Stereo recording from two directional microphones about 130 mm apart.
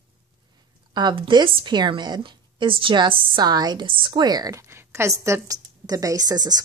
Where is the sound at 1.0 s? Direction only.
35° right (ahead or behind).